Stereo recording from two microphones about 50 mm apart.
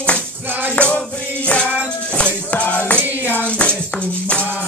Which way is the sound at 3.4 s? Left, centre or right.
Left.